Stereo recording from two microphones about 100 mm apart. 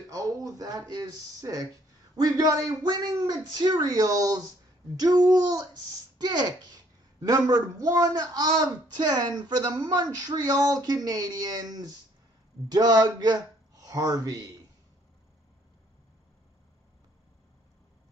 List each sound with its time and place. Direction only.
0.1 s a child's voice: 35° right (ahead or behind)